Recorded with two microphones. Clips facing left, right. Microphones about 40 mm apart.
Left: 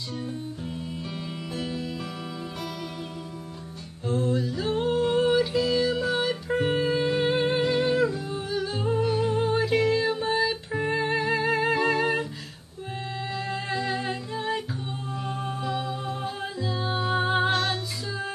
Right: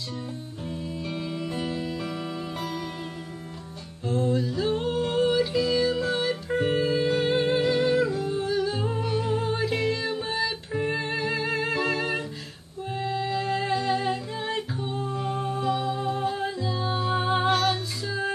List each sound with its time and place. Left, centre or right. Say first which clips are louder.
1.2 s music: right 3 dB; centre
4.3 s singing: right 1 dB; centre
5.2 s music: even; centre
9.2 s music: left 2 dB; centre
9.5 s music: left 3 dB; centre
15.3 s music: right 3 dB; centre
15.7 s music: right 4 dB; centre
17.6 s music: right 3 dB; centre